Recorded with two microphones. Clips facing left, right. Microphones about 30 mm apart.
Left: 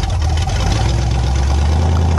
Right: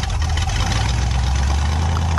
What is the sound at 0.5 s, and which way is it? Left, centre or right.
Vehicle, centre.